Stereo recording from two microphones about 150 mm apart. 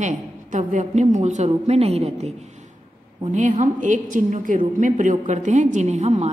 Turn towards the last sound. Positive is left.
turn(degrees=-50)  # may be behind; listen again after turning